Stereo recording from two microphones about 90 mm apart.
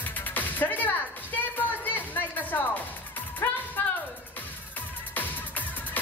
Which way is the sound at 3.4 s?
20° left (ahead or behind).